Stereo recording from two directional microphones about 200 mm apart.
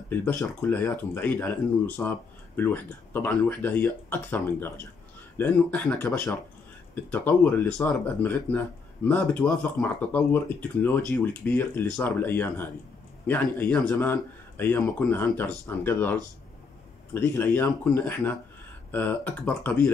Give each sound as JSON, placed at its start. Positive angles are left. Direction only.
{"t": 0.1, "sound": "speech", "side_deg": 10}